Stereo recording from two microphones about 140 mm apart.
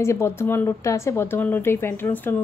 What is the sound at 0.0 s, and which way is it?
A woman's voice, 20° left (ahead or behind).